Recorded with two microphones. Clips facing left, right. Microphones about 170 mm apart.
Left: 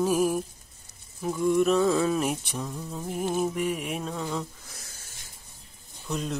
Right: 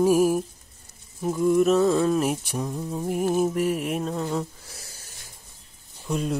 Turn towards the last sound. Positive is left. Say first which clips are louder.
# right 5 dB
turn(degrees=-10)  # may be behind; listen again after turning